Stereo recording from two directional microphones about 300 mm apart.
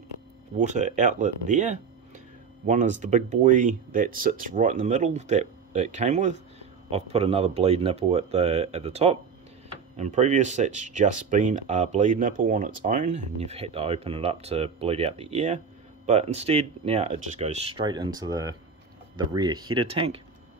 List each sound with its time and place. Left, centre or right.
0.6 s speech: right